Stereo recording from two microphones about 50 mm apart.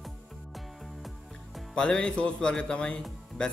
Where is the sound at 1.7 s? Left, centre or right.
Centre.